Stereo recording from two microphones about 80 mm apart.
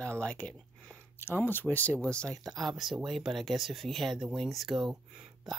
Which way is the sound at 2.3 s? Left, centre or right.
Right.